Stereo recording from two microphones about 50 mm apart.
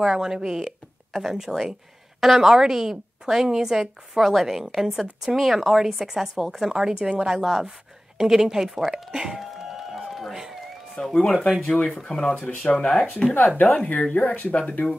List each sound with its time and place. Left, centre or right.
0.0 s a woman's voice: centre
7.4 s a woman's voice: centre
9.1 s music: centre
11.0 s speech: centre
13.7 s speech: left
14.5 s speech: left